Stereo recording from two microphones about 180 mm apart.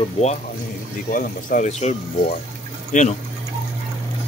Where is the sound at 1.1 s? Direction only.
50° left (ahead or behind).